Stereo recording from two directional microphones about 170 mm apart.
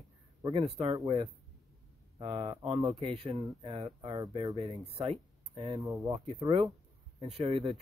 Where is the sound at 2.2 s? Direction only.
25° right (ahead or behind).